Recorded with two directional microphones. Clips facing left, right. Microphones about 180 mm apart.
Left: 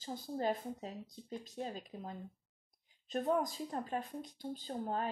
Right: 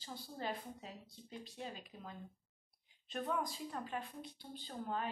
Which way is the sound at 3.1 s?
40° left (ahead or behind).